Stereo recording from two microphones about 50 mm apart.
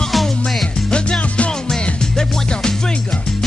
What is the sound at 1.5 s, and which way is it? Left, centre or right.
Music, centre.